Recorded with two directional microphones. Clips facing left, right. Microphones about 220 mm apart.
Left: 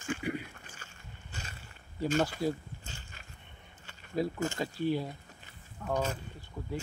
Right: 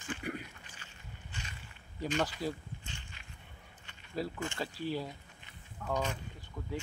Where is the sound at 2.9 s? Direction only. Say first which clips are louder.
Left 1 dB; 40° left (ahead or behind).